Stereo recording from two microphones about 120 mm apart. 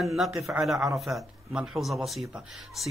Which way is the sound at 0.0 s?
Centre (ahead or behind).